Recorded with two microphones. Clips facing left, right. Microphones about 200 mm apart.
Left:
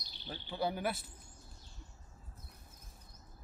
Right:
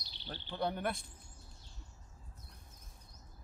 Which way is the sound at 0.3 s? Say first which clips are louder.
Left 1 dB; 5° left (ahead or behind).